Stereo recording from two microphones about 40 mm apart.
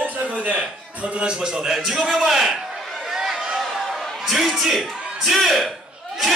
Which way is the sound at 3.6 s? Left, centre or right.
Centre.